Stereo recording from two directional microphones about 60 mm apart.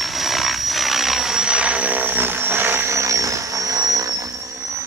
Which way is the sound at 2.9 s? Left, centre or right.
Right.